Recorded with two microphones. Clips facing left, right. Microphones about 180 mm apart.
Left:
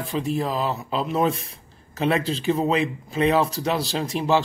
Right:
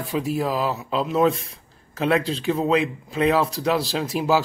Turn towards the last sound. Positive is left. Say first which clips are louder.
# right 1 dB
turn(degrees=-5)  # may be behind; listen again after turning